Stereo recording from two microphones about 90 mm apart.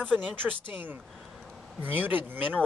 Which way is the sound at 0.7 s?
20° right (ahead or behind).